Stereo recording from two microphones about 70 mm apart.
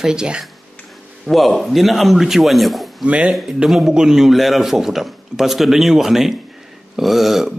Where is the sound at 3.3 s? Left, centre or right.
Centre.